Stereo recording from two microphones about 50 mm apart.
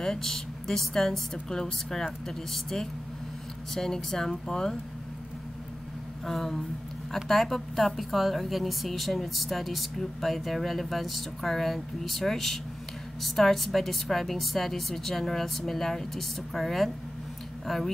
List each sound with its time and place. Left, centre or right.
0.0 s a woman's voice: centre
6.2 s a woman's voice: centre